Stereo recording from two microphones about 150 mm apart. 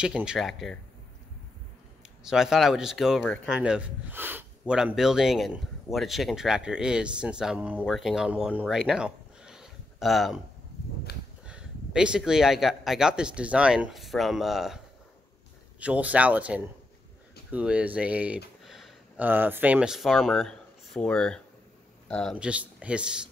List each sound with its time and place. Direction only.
0.0 s a man's voice: 5° right (ahead or behind)
2.2 s a man's voice: 5° right (ahead or behind)
11.1 s a sound: 90° left
11.4 s a man's voice: 5° right (ahead or behind)
15.8 s speech: 10° right (ahead or behind)
17.5 s a sound: 10° right (ahead or behind)
19.2 s a man's voice: 15° right (ahead or behind); by 22.4 s 5° left (ahead or behind)
22.4 s speech: 10° right (ahead or behind)